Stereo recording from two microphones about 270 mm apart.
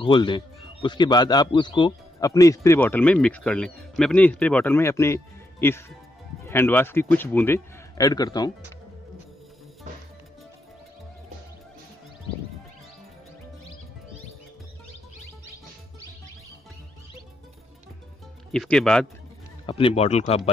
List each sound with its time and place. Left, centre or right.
0.0 s a man's voice: centre
18.5 s speech: centre
19.6 s speech: left